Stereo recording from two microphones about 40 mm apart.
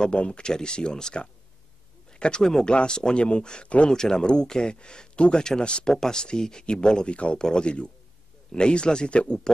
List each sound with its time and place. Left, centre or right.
0.0 s speech: left